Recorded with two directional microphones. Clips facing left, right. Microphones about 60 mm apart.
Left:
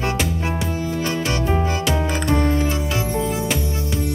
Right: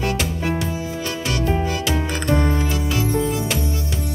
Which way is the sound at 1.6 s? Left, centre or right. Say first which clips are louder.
Left 1 dB; left.